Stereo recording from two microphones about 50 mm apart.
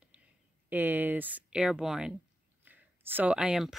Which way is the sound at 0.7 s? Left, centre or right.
Right.